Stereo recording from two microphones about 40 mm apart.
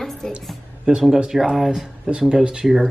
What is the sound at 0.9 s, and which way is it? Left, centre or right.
Speech, right.